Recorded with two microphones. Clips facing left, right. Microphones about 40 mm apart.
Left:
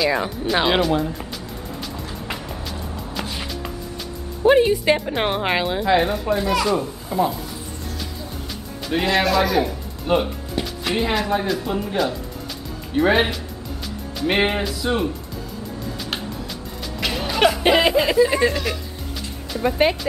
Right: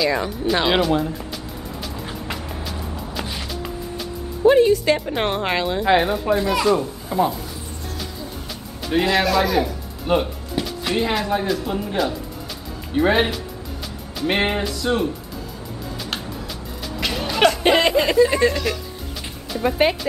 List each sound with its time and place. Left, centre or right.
0.0 s speech: centre
1.8 s music: centre
4.5 s a woman's voice: centre
5.9 s speech: centre
8.8 s speech: centre
17.0 s speech: centre